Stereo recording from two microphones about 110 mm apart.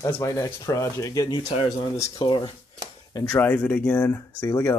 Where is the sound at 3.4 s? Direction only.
15° left (ahead or behind).